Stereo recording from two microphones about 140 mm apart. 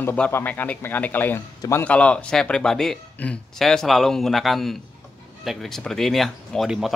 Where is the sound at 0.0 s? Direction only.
15° left (ahead or behind).